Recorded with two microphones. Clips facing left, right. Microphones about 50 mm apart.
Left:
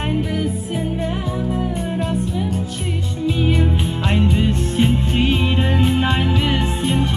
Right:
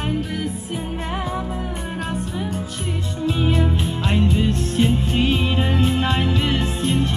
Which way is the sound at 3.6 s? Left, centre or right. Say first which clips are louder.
Left 1 dB; centre.